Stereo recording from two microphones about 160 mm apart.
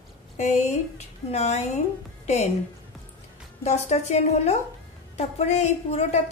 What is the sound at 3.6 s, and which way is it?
A woman's voice, 45° left (ahead or behind).